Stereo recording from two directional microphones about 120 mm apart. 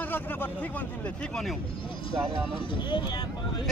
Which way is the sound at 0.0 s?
15° left (ahead or behind).